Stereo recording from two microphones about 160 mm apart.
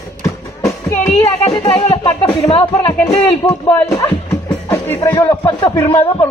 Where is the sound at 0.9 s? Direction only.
40° left (ahead or behind).